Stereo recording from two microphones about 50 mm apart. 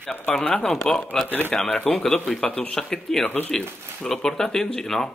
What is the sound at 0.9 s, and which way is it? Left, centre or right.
Speech, centre.